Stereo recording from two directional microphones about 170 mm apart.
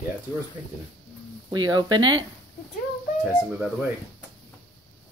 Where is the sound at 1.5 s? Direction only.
25° right (ahead or behind).